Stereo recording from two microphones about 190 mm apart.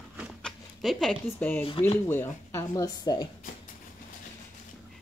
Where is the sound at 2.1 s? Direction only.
10° left (ahead or behind).